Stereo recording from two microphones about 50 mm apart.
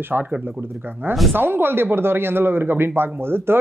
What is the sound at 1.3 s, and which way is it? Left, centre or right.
Speech, right.